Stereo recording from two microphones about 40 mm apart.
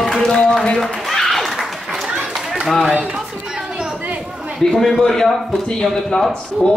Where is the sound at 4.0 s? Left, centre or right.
Right.